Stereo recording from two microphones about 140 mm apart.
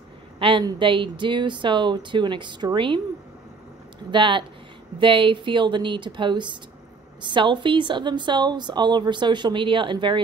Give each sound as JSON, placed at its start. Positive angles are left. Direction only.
{"t": 0.4, "sound": "a woman's voice", "side_deg": -35}
{"t": 4.1, "sound": "a woman's voice", "side_deg": -35}